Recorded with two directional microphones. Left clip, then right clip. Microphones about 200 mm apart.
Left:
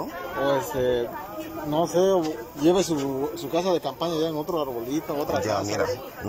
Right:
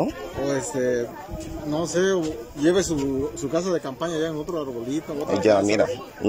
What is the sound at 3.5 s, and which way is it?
Speech, 90° right.